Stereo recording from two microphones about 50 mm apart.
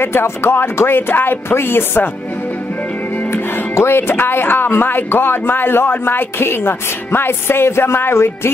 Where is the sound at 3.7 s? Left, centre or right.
Left.